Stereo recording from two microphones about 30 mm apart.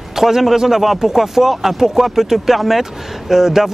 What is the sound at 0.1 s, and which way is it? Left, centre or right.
A man's voice, centre.